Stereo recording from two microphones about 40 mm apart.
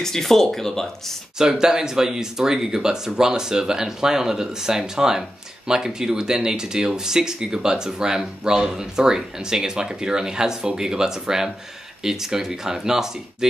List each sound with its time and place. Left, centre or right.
0.0 s speech: centre
1.4 s speech: centre